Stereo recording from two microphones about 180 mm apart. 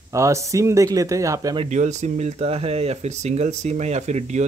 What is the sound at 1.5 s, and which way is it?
Speech, 35° right (ahead or behind).